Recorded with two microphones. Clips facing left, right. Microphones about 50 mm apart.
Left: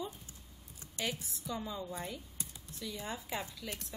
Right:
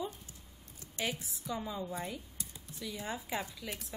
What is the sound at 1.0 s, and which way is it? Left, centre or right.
A woman's voice, right.